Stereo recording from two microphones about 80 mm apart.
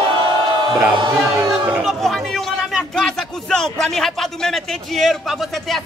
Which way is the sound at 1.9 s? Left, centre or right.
Centre.